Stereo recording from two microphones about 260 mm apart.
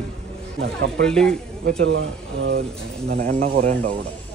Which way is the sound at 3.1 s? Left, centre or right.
Right.